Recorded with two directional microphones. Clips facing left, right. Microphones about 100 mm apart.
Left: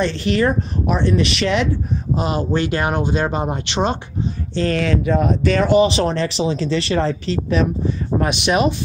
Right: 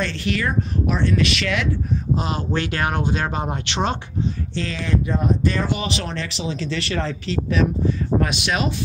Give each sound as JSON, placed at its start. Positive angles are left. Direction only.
{"t": 0.0, "sound": "speech", "side_deg": 25}
{"t": 0.8, "sound": "speech", "side_deg": 20}
{"t": 2.1, "sound": "speech", "side_deg": 10}
{"t": 4.7, "sound": "speech", "side_deg": 85}
{"t": 5.8, "sound": "speech", "side_deg": 30}